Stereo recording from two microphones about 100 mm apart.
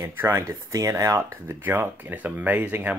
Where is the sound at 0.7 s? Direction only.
35° right (ahead or behind); by 3.0 s 15° right (ahead or behind).